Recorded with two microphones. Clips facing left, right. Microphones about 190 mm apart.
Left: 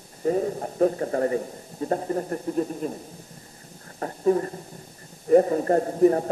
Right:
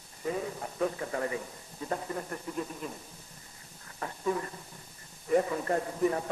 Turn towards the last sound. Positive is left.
turn(degrees=40)  # may be behind; listen again after turning